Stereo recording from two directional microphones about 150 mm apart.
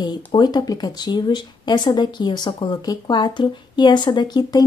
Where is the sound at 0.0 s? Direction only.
30° left (ahead or behind).